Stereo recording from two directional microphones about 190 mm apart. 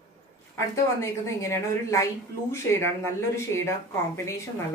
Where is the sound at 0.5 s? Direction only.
15° left (ahead or behind).